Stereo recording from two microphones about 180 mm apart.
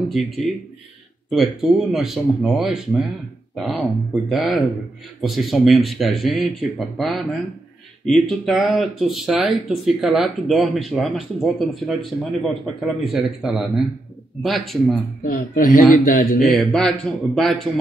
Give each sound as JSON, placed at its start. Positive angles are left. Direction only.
{"t": 0.1, "sound": "speech", "side_deg": 0}
{"t": 8.3, "sound": "speech", "side_deg": 0}
{"t": 15.2, "sound": "speech", "side_deg": 50}
{"t": 16.3, "sound": "speech", "side_deg": 5}